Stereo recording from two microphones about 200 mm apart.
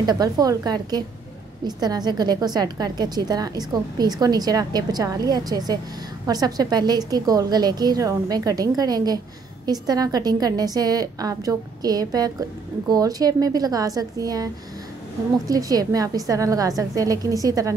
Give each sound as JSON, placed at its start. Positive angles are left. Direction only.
{"t": 0.0, "sound": "a woman's voice", "side_deg": -20}